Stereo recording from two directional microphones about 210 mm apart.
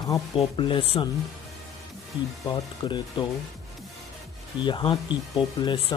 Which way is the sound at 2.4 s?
20° left (ahead or behind).